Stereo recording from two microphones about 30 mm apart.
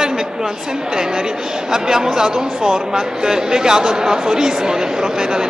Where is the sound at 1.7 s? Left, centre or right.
Centre.